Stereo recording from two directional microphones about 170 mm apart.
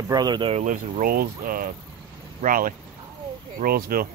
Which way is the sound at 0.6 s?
50° right (ahead or behind).